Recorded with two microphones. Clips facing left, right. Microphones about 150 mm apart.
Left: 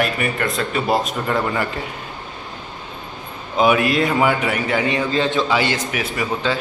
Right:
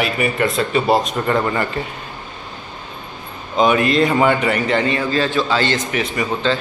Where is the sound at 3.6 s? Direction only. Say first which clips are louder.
Right 1 dB; 5° left (ahead or behind).